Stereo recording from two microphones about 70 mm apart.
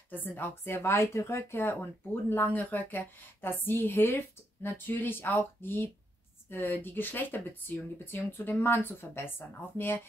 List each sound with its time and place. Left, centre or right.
0.1 s speech: left